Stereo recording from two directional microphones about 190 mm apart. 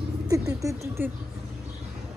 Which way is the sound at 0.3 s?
15° right (ahead or behind).